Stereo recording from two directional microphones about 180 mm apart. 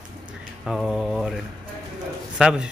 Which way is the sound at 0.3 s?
Centre (ahead or behind).